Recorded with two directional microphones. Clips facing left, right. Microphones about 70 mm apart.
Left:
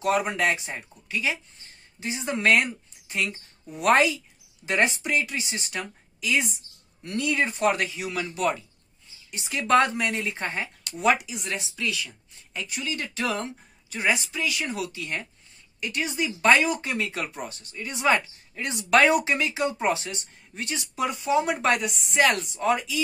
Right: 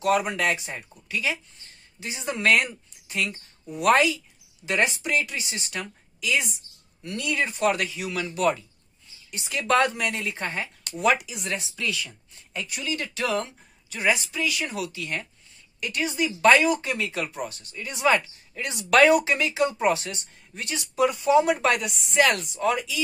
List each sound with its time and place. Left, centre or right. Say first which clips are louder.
0.0 s speech: right 1 dB; left
5.5 s speech: left 1 dB; centre
7.0 s speech: left 2 dB; left
11.4 s speech: even; centre
13.2 s speech: right 2 dB; centre
18.6 s speech: right 1 dB; left